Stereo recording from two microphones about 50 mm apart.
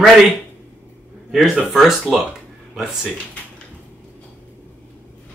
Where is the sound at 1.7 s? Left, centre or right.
Centre.